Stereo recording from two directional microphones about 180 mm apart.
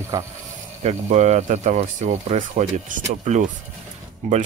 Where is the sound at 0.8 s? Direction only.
40° right (ahead or behind).